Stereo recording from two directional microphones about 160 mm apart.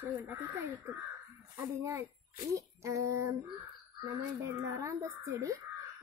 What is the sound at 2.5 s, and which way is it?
Speech, 20° right (ahead or behind).